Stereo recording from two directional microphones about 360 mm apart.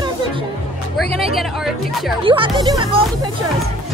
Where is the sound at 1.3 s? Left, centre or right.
Centre.